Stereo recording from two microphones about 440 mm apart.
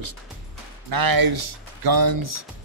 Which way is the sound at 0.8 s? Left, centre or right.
Right.